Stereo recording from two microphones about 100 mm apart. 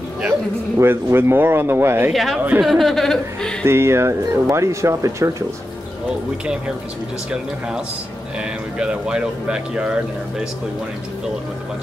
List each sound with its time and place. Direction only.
0.7 s speech: 25° right (ahead or behind)
2.1 s speech: centre (ahead or behind)
3.6 s speech: 25° right (ahead or behind)
8.4 s speech: 10° right (ahead or behind)